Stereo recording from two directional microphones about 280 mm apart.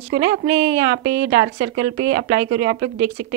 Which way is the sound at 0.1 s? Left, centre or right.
Right.